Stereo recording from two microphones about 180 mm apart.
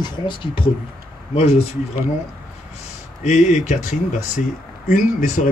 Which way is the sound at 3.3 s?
40° left (ahead or behind).